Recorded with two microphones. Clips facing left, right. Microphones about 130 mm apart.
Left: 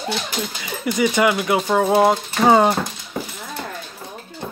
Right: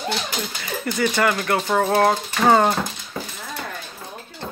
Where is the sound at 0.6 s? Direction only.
10° left (ahead or behind).